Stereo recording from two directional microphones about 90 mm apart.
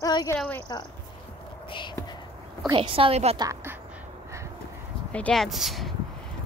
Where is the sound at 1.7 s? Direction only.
60° left (ahead or behind).